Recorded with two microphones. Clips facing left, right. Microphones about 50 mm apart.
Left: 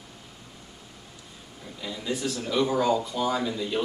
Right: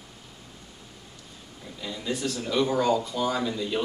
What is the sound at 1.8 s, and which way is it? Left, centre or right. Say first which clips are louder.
Speech: even; centre.